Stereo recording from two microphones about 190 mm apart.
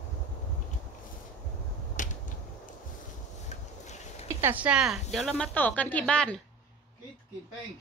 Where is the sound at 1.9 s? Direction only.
40° left (ahead or behind).